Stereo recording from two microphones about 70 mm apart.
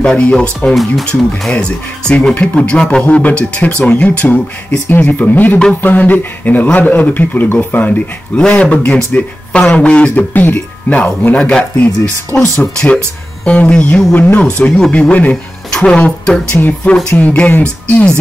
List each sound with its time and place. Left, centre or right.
0.0 s speech: centre
11.8 s speech: left
13.5 s speech: centre